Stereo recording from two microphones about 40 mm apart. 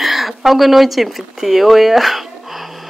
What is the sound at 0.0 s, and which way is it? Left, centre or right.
Speech, centre.